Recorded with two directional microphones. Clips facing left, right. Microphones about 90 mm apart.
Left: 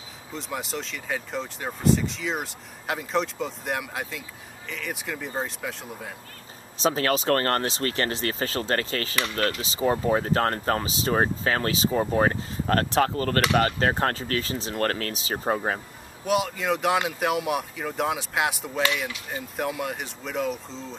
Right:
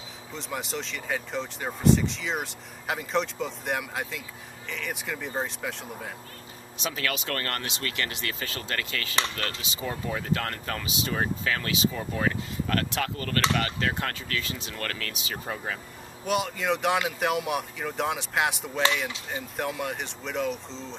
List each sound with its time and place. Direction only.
0.3 s speech: centre (ahead or behind)
6.8 s speech: 35° left (ahead or behind)
16.3 s speech: centre (ahead or behind)